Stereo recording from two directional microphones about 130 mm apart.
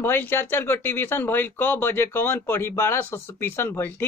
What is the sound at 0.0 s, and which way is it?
Speech, 15° left (ahead or behind).